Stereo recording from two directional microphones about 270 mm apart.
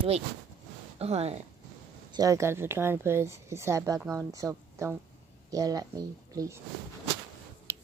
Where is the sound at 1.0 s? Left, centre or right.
Right.